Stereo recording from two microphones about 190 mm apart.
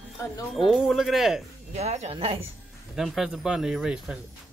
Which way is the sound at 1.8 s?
35° right (ahead or behind).